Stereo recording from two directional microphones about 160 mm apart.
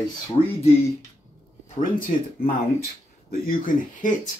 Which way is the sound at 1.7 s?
60° left (ahead or behind).